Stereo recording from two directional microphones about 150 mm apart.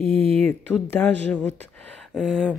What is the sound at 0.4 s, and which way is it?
Speech, 10° left (ahead or behind).